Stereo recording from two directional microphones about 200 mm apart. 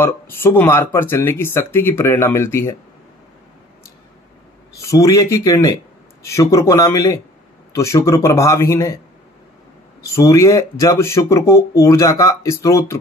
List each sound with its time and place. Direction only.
0.0 s speech: 10° left (ahead or behind)
4.8 s speech: 15° left (ahead or behind)
10.1 s speech: 15° left (ahead or behind)